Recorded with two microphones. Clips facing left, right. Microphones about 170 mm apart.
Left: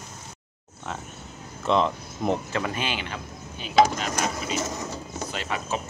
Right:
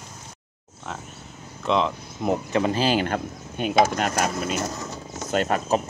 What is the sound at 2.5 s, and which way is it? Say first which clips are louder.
Speech: right 7 dB; 25° right (ahead or behind).